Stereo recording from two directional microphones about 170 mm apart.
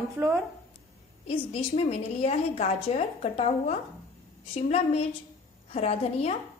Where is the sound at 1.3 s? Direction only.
35° left (ahead or behind).